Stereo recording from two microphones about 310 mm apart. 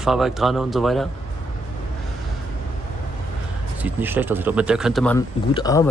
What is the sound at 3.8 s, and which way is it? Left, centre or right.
Speech, centre.